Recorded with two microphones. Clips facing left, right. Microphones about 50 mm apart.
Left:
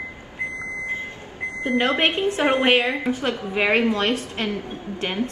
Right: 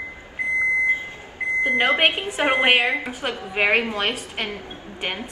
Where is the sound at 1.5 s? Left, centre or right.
Right.